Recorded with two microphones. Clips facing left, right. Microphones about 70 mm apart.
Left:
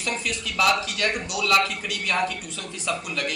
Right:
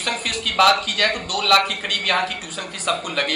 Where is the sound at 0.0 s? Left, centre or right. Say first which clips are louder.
Right 3 dB; right.